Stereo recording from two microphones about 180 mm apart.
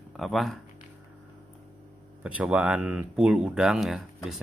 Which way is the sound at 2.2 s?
5° right (ahead or behind).